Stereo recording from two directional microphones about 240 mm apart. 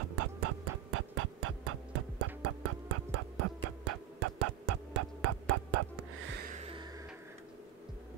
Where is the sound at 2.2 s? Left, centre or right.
Right.